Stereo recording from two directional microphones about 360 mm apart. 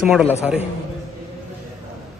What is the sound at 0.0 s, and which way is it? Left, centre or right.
Speech, centre.